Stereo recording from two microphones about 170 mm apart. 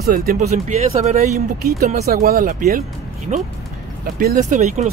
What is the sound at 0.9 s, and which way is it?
Speech, 40° right (ahead or behind).